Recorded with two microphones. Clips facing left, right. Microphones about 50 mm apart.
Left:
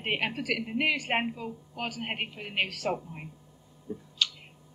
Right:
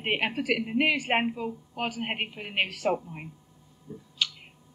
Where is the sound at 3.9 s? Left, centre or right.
Centre.